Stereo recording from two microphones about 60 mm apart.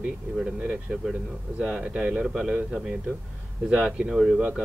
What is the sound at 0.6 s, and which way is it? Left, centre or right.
Speech, right.